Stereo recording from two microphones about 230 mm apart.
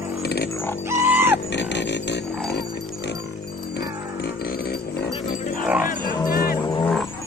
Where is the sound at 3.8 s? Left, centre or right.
Left.